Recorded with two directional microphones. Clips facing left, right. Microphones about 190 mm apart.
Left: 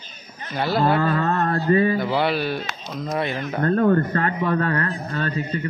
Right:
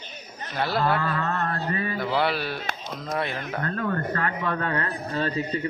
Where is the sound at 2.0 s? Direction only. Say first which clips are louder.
Left 3 dB; centre (ahead or behind).